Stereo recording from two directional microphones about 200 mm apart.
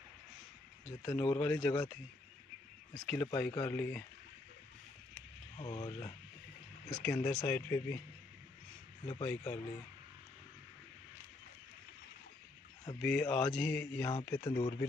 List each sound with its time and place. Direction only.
1.0 s speech: 20° left (ahead or behind)
5.6 s speech: 25° left (ahead or behind)
6.9 s speech: 5° left (ahead or behind)
7.2 s speech: 15° left (ahead or behind)
9.0 s speech: 20° left (ahead or behind)
13.0 s speech: 5° left (ahead or behind)
14.3 s speech: 20° left (ahead or behind)